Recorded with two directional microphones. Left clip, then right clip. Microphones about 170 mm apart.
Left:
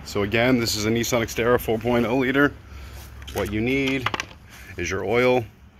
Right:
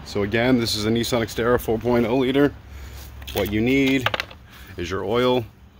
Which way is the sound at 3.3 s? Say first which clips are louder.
Right 3 dB; 30° right (ahead or behind).